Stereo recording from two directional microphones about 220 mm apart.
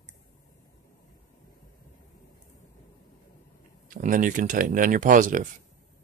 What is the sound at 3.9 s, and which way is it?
Speech, 35° right (ahead or behind).